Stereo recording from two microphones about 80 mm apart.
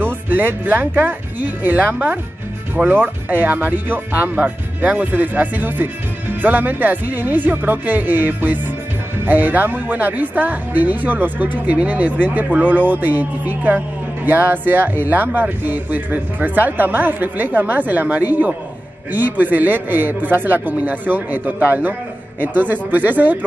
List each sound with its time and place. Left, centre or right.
0.0 s speech: right